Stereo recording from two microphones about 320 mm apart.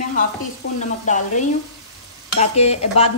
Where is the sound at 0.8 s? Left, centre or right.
Left.